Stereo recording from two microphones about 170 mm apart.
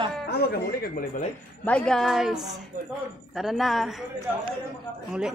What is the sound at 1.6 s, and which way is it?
Speech, 5° left (ahead or behind).